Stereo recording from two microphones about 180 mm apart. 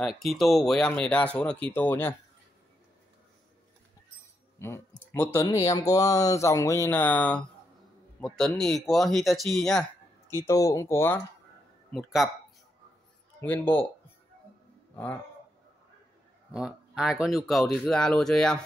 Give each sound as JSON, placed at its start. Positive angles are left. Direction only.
{"t": 0.0, "sound": "speech", "side_deg": 0}
{"t": 4.6, "sound": "speech", "side_deg": 15}
{"t": 10.3, "sound": "speech", "side_deg": 20}
{"t": 11.9, "sound": "speech", "side_deg": 0}
{"t": 13.4, "sound": "speech", "side_deg": 10}
{"t": 16.5, "sound": "speech", "side_deg": -5}